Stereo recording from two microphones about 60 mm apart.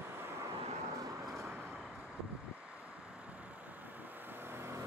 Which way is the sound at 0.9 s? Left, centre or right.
Right.